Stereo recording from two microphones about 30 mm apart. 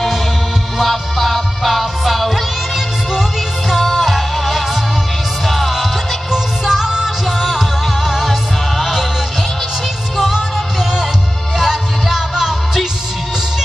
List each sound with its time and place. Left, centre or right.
0.7 s music: centre
3.7 s music: centre
6.3 s music: centre
7.2 s music: centre
11.5 s music: centre